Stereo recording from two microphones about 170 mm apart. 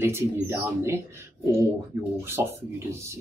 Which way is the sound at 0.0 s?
15° right (ahead or behind).